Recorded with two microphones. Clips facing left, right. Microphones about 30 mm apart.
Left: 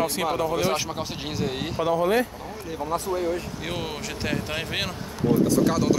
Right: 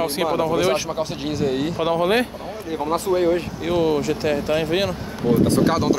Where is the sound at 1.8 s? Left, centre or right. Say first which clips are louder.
Right 1 dB; right.